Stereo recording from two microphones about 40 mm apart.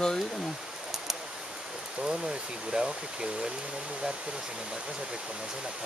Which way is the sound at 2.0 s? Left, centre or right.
Centre.